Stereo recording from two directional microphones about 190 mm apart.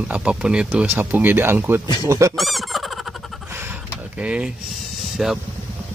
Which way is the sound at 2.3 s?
Centre (ahead or behind).